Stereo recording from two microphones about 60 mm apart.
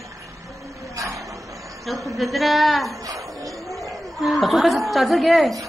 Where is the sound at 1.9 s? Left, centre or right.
Centre.